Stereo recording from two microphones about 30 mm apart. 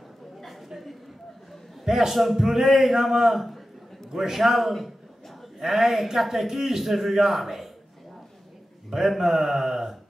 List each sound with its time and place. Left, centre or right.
1.9 s a man's voice: centre
4.1 s a man's voice: centre
8.9 s a man's voice: centre